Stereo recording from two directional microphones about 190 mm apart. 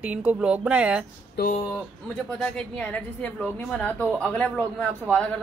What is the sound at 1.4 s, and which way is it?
Speech, 55° left (ahead or behind).